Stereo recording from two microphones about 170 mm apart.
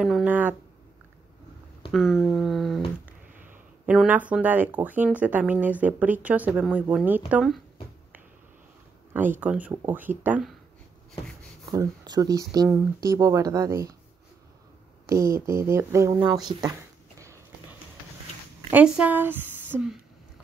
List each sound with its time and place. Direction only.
0.0 s speech: 5° right (ahead or behind)
1.9 s a sound: centre (ahead or behind)
3.8 s speech: 5° right (ahead or behind)
9.1 s speech: 10° right (ahead or behind)
11.7 s speech: 20° right (ahead or behind)
15.0 s speech: 15° right (ahead or behind)
18.7 s a woman's voice: 10° right (ahead or behind)